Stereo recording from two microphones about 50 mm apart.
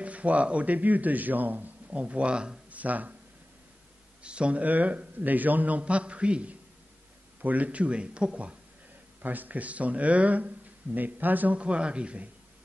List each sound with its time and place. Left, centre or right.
0.0 s speech: right
1.9 s a man's voice: right
2.7 s speech: right
4.2 s a man's voice: right
9.2 s a man's voice: right